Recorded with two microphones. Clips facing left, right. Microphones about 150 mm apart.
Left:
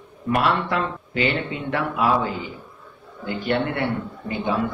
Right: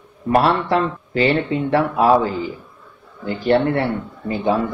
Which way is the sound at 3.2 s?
35° right (ahead or behind).